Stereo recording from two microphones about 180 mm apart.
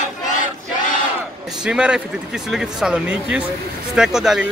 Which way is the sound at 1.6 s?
5° right (ahead or behind).